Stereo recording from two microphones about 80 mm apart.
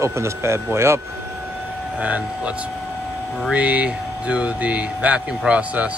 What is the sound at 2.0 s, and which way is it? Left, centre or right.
Speech, centre.